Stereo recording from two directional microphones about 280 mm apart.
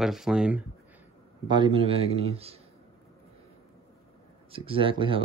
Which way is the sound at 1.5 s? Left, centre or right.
Centre.